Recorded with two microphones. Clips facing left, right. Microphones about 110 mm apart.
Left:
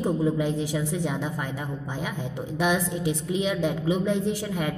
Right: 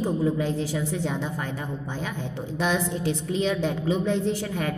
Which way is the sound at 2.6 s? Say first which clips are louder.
Left 1 dB; 10° left (ahead or behind).